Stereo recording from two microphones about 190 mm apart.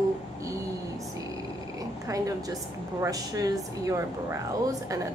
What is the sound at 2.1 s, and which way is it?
A woman's voice, 20° right (ahead or behind).